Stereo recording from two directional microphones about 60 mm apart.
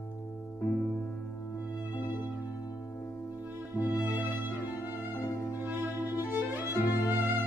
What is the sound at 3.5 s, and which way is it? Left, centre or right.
Music, right.